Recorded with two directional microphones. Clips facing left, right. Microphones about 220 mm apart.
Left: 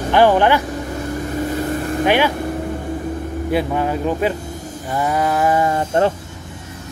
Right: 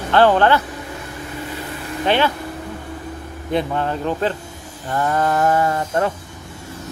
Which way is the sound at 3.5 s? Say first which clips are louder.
Left 1 dB; 10° left (ahead or behind).